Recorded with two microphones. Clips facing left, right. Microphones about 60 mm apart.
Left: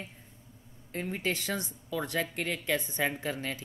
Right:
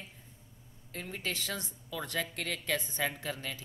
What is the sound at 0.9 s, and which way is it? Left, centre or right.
Speech, left.